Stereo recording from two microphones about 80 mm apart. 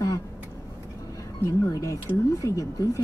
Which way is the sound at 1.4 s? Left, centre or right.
Left.